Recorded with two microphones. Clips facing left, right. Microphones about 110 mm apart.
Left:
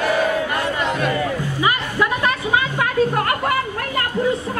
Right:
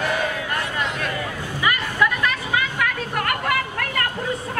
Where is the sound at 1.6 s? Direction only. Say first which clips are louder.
Even; 30° left (ahead or behind).